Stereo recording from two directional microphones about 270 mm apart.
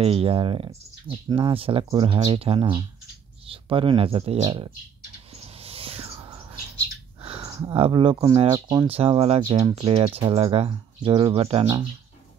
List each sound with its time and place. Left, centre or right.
0.0 s speech: right
5.3 s whispering: right
7.2 s speech: centre